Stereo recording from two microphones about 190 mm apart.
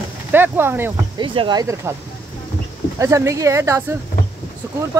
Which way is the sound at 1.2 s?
25° right (ahead or behind).